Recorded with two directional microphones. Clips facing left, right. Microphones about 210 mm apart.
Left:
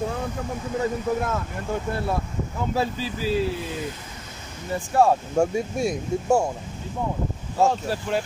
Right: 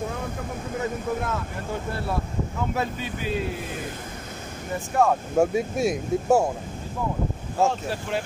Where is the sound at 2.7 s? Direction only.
30° left (ahead or behind).